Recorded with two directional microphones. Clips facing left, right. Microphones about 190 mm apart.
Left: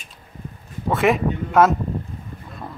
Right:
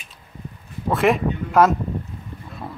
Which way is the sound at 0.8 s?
Centre (ahead or behind).